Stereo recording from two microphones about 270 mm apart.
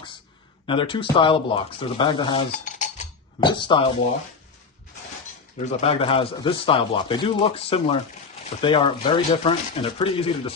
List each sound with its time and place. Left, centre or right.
0.7 s speech: centre
2.5 s a sound: left
3.3 s speech: centre
5.7 s speech: left